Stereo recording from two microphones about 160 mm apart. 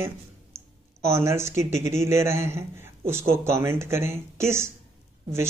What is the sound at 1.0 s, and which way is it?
A man's voice, 15° right (ahead or behind).